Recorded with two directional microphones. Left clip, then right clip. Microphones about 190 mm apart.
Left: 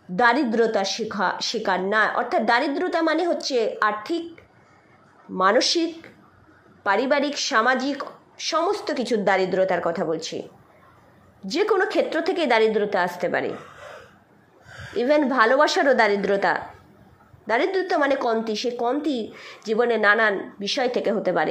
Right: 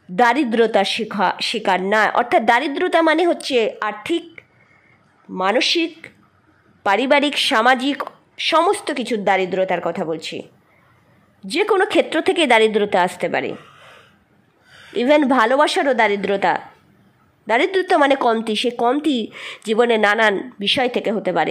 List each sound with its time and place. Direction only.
0.2 s speech: 55° right (ahead or behind)
5.4 s a woman's voice: 40° right (ahead or behind)
11.4 s a woman's voice: 45° right (ahead or behind)
15.0 s a woman's voice: 55° right (ahead or behind)
17.5 s speech: 60° right (ahead or behind)